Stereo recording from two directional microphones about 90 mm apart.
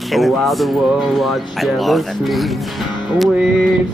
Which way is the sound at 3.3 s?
5° right (ahead or behind).